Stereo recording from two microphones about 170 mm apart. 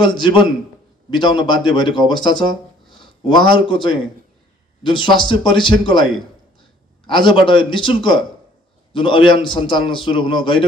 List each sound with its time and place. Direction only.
0.0 s speech: 30° left (ahead or behind)